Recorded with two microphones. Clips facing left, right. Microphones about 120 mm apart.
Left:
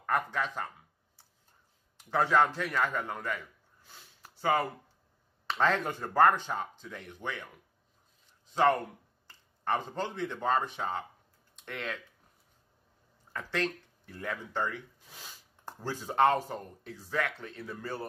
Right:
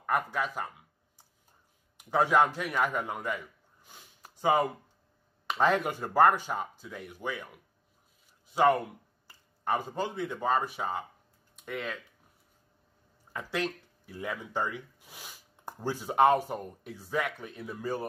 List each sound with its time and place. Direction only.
0.0 s speech: 10° right (ahead or behind)
2.0 s a man's voice: 15° right (ahead or behind)
8.5 s speech: 10° right (ahead or behind)
13.3 s speech: 10° right (ahead or behind)